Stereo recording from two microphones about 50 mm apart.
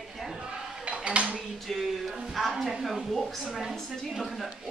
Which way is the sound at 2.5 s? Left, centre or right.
Centre.